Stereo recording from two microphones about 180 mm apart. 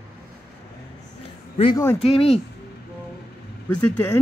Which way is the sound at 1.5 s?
30° left (ahead or behind).